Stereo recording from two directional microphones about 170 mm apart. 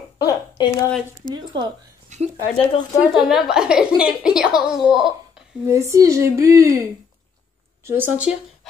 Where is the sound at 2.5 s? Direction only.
35° left (ahead or behind).